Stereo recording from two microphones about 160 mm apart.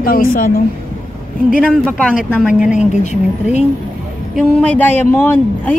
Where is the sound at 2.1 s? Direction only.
5° right (ahead or behind).